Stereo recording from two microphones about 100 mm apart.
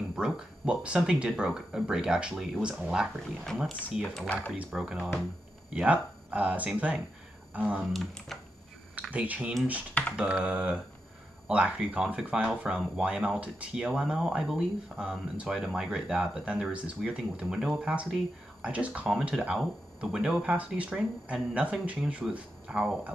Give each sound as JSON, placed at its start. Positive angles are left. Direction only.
{"t": 0.1, "sound": "speech", "side_deg": -10}
{"t": 4.0, "sound": "speech", "side_deg": 10}
{"t": 4.5, "sound": "speech", "side_deg": -5}
{"t": 7.9, "sound": "speech", "side_deg": 0}
{"t": 9.1, "sound": "speech", "side_deg": -15}